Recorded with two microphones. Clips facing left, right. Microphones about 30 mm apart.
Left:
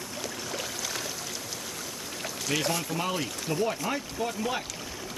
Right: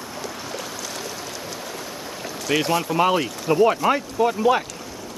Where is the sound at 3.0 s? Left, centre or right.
Right.